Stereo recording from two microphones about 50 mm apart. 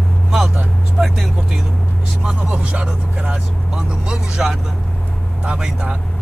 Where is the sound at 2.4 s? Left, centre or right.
Right.